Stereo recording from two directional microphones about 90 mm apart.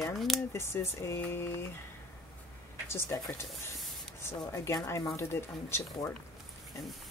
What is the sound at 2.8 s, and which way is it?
Speech, 30° left (ahead or behind).